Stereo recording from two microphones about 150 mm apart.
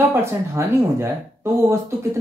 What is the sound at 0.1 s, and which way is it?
Speech, 15° right (ahead or behind).